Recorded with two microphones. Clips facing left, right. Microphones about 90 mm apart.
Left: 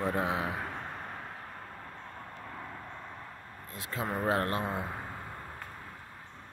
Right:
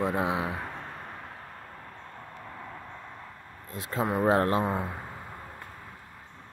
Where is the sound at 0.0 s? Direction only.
20° right (ahead or behind).